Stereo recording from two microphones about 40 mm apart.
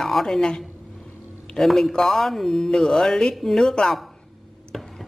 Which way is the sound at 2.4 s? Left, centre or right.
Centre.